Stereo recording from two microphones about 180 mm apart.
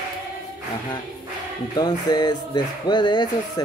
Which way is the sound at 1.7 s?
25° left (ahead or behind).